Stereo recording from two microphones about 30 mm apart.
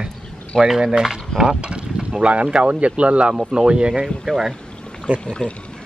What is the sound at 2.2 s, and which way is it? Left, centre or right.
Speech, right.